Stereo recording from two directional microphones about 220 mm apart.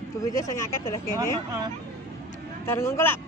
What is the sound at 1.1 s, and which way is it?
Speech, 15° right (ahead or behind).